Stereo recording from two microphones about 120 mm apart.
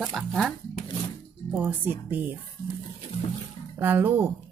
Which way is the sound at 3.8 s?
15° right (ahead or behind).